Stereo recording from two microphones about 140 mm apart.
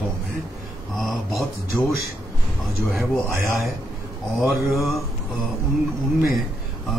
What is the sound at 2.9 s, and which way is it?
Speech, centre (ahead or behind).